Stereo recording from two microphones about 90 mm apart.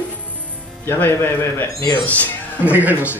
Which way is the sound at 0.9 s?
25° left (ahead or behind).